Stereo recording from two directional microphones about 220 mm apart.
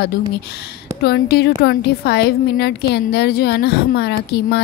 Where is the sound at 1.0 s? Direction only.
50° left (ahead or behind).